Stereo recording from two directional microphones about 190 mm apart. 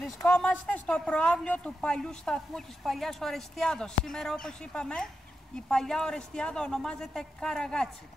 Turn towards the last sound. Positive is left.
turn(degrees=5)  # may be behind; listen again after turning